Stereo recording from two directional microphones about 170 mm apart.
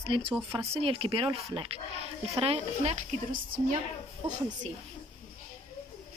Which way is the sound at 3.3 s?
55° right (ahead or behind).